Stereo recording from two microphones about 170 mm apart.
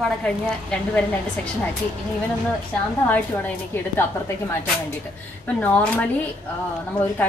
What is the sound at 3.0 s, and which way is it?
A woman's voice, 10° left (ahead or behind).